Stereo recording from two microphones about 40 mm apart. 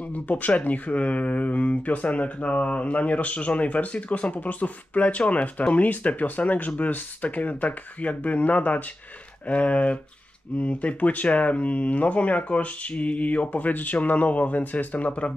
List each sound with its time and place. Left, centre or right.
0.1 s speech: left